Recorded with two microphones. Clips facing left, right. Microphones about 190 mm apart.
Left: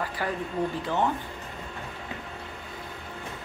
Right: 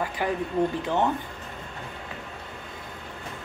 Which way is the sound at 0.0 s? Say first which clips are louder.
Right 3 dB; 15° right (ahead or behind).